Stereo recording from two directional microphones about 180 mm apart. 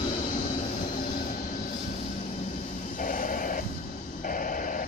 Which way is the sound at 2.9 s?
50° left (ahead or behind).